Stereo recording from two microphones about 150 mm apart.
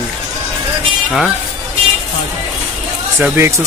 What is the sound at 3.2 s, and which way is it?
Speech, 15° right (ahead or behind).